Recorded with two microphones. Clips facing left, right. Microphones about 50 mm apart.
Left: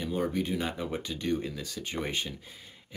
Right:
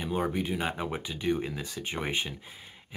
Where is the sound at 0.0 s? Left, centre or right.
Right.